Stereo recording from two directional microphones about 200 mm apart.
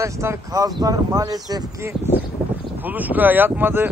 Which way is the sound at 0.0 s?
15° right (ahead or behind).